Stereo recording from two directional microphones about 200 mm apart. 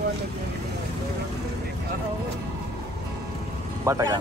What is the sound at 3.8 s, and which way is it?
Speech, 15° right (ahead or behind).